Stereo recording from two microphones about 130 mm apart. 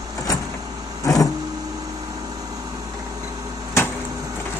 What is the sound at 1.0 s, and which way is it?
Vehicle, 25° left (ahead or behind).